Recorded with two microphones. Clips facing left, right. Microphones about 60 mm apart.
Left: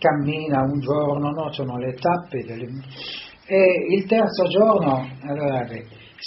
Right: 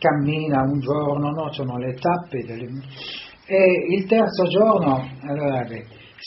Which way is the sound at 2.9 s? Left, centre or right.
Centre.